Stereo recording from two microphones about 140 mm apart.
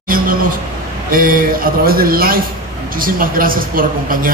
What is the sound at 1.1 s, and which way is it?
A man's voice, 90° right.